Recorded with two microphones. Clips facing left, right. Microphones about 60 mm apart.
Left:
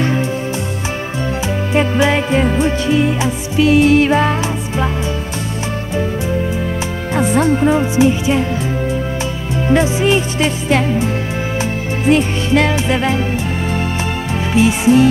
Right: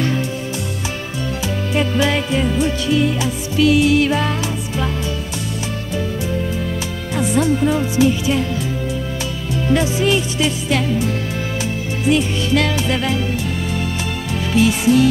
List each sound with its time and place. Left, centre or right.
1.7 s music: left
2.3 s music: left
7.2 s speech: left
9.7 s music: left
12.1 s music: left
12.5 s music: left
14.5 s music: left